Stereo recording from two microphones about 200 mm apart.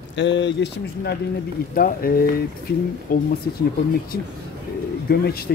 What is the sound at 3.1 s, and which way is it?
Speech, 45° left (ahead or behind).